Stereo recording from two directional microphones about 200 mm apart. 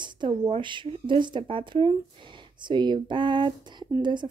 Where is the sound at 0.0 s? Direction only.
25° right (ahead or behind).